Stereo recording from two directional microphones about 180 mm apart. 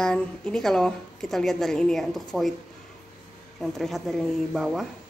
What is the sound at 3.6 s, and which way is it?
Speech, centre (ahead or behind).